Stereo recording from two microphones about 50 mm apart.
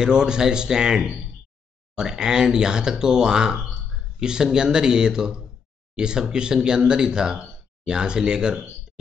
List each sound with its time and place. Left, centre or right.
0.0 s speech: centre